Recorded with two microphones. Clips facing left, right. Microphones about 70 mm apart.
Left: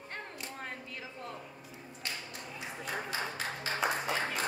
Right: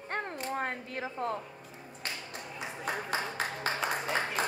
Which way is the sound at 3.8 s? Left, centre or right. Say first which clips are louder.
Left 2 dB; centre.